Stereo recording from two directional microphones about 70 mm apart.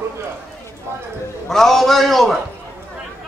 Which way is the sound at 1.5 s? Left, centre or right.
Centre.